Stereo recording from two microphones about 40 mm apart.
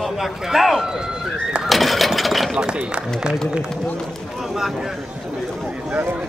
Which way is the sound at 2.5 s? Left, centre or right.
Right.